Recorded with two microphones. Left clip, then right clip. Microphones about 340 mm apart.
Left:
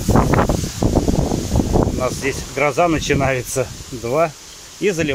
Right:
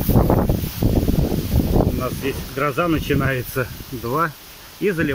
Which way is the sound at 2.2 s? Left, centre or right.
Centre.